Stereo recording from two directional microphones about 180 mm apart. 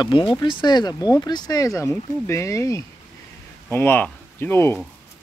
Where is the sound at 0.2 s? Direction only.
25° left (ahead or behind).